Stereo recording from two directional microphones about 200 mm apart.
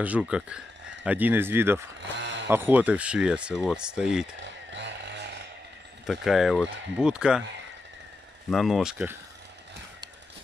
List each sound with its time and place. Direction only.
0.0 s speech: 5° right (ahead or behind)
2.1 s a sound: 65° right (ahead or behind)
2.4 s speech: 10° right (ahead or behind)
4.4 s chainsaw: 60° right (ahead or behind)
6.0 s speech: centre (ahead or behind)
8.5 s speech: centre (ahead or behind)